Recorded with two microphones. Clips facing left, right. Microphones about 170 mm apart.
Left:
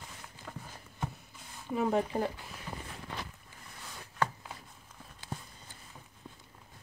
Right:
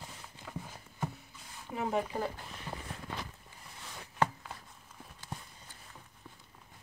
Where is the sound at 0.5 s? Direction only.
5° right (ahead or behind).